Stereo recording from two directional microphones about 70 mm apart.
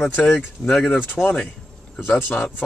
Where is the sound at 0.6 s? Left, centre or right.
Left.